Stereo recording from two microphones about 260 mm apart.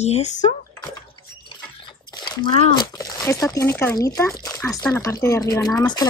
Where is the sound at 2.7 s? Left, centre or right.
Centre.